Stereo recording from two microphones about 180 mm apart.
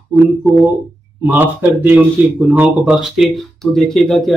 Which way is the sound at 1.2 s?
10° right (ahead or behind).